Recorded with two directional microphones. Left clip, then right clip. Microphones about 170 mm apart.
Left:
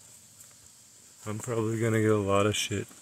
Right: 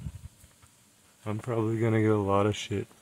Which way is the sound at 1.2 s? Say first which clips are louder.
Right 1 dB; 25° right (ahead or behind).